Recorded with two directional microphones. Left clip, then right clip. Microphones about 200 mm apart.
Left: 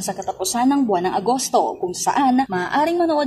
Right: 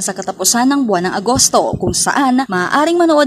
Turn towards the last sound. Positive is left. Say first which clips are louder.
# right 7 dB
turn(degrees=-30)  # may be behind; listen again after turning